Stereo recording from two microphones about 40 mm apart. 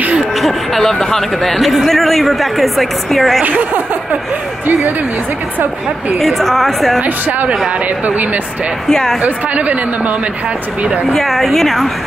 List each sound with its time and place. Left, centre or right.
0.3 s music: centre
0.9 s a woman's voice: centre
3.4 s speech: right
6.1 s speech: centre
7.0 s speech: right
8.9 s a woman's voice: centre
9.2 s speech: right
11.1 s a woman's voice: centre